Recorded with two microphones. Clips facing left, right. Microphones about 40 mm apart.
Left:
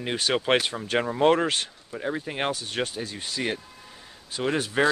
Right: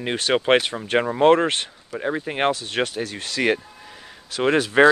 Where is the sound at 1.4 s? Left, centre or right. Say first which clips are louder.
Right 3 dB; right.